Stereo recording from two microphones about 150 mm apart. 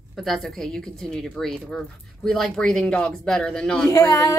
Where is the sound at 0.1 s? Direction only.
Centre (ahead or behind).